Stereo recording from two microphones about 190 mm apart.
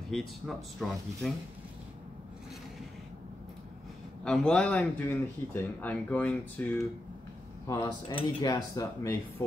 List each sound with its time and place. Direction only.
0.1 s speech: centre (ahead or behind)
4.2 s speech: 5° left (ahead or behind)
7.6 s speech: 20° left (ahead or behind)